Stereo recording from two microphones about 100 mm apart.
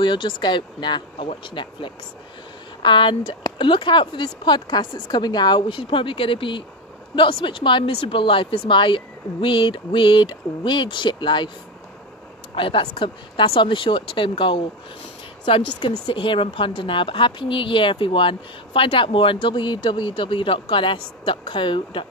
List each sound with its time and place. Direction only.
0.0 s speech: 55° left (ahead or behind)
12.5 s speech: 60° left (ahead or behind)